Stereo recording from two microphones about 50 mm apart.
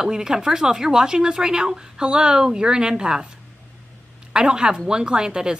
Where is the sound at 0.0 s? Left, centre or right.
Centre.